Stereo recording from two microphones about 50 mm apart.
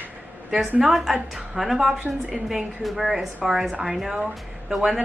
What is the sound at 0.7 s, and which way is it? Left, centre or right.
A woman's voice, centre.